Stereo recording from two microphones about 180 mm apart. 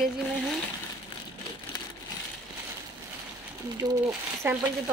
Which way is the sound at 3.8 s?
15° right (ahead or behind).